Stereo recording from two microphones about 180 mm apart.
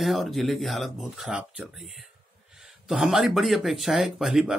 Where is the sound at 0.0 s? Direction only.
Centre (ahead or behind).